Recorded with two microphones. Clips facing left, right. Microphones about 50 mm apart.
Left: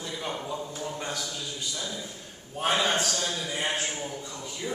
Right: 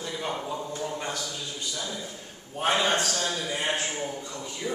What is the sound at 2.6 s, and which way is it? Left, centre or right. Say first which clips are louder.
Speech: right 1 dB; centre.